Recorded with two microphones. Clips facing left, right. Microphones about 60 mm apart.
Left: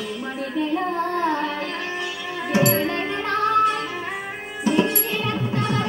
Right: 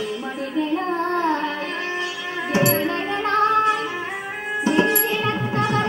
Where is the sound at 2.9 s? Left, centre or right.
Right.